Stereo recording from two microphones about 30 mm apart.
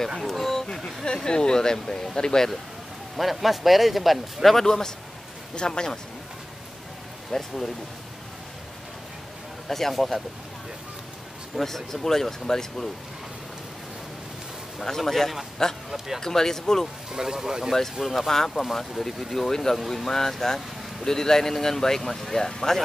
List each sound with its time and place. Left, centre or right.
0.3 s speech: centre
1.0 s speech: left
3.2 s speech: centre
4.6 s speech: centre
7.2 s speech: centre
9.7 s speech: centre
11.6 s speech: centre
14.9 s speech: centre
17.1 s speech: centre
18.0 s speech: centre
18.3 s speech: centre